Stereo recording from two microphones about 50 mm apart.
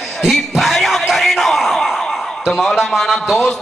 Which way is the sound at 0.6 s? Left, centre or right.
Centre.